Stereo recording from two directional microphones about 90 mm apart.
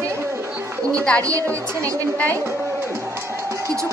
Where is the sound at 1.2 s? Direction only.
40° right (ahead or behind).